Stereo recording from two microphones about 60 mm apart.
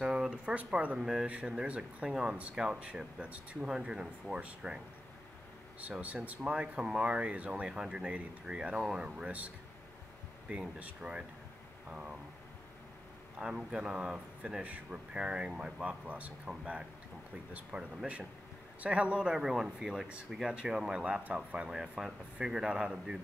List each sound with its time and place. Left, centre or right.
0.0 s a sound: centre
0.7 s speech: centre
5.8 s speech: right
10.5 s speech: centre
13.4 s speech: centre